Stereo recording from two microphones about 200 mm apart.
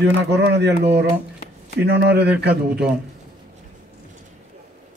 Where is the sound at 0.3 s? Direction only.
60° right (ahead or behind).